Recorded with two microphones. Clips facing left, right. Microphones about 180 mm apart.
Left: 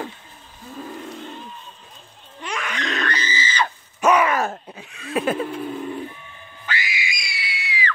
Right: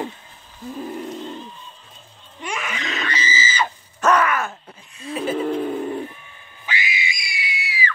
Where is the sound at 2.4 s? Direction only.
10° right (ahead or behind).